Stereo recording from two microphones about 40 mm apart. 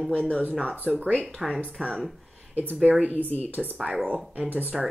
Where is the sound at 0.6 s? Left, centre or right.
Centre.